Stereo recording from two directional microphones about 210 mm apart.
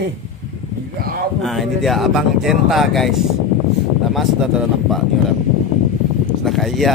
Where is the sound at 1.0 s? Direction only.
45° right (ahead or behind).